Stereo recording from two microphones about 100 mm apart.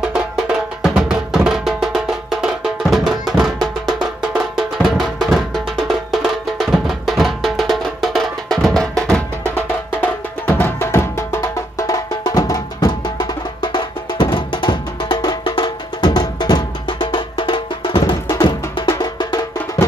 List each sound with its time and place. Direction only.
0.8 s music: 5° right (ahead or behind)
9.9 s music: 25° left (ahead or behind); by 18.3 s 55° left (ahead or behind)
18.9 s music: 40° left (ahead or behind)